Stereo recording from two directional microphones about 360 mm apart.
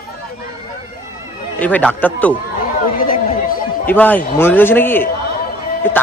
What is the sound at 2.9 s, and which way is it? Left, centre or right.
Speech, left.